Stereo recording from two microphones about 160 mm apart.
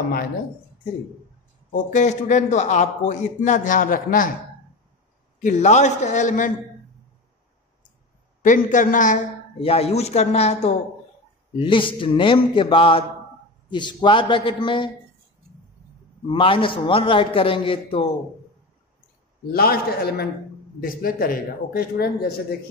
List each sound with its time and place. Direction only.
1.7 s a man's voice: 50° left (ahead or behind)
5.4 s a man's voice: 45° left (ahead or behind)
8.4 s a man's voice: 50° left (ahead or behind)
9.6 s a man's voice: 40° left (ahead or behind)
16.3 s a man's voice: 35° left (ahead or behind)
19.5 s a man's voice: 75° left (ahead or behind)
20.8 s speech: 65° left (ahead or behind)